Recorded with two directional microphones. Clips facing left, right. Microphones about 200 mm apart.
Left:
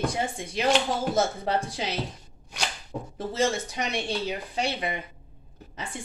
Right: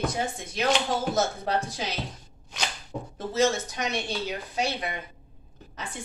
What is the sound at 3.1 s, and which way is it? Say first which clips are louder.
Speech: right 2 dB; 30° left (ahead or behind).